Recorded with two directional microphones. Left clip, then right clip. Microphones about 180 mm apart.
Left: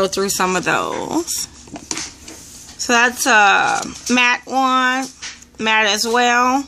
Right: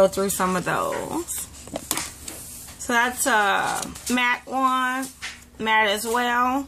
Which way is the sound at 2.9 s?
50° left (ahead or behind).